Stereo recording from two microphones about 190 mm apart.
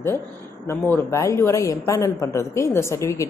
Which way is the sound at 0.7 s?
10° left (ahead or behind).